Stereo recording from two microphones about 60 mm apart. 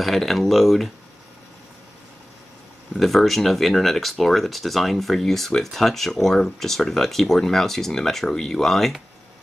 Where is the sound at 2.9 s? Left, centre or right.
Centre.